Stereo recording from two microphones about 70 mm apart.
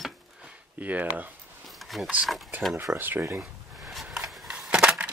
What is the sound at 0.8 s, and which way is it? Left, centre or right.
Speech, right.